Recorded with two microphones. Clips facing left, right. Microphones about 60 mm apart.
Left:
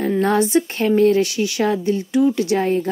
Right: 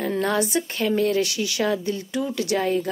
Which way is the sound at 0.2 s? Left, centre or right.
Left.